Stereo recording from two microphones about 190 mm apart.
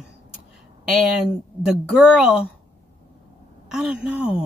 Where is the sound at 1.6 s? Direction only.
5° right (ahead or behind).